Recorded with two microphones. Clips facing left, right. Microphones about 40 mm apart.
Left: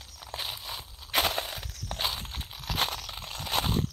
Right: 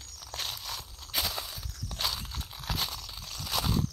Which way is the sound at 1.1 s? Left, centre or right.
Left.